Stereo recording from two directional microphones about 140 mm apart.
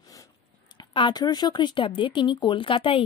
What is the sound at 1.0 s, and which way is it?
A woman's voice, 30° left (ahead or behind).